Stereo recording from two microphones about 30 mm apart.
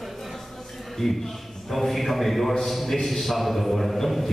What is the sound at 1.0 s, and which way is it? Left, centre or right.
A man's voice, centre.